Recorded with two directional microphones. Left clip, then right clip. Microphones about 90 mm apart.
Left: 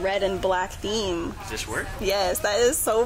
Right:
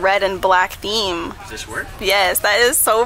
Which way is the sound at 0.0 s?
30° right (ahead or behind).